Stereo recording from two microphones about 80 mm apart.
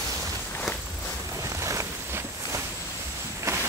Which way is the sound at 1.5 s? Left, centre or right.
Right.